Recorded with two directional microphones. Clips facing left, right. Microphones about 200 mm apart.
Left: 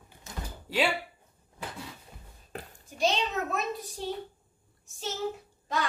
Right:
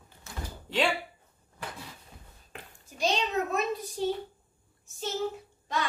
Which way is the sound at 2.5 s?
40° left (ahead or behind).